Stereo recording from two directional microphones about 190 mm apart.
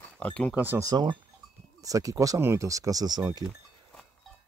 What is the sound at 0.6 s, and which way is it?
Speech, 15° right (ahead or behind).